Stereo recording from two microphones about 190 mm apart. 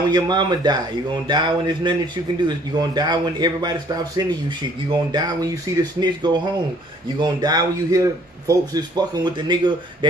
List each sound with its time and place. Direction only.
0.1 s a man's voice: 20° right (ahead or behind)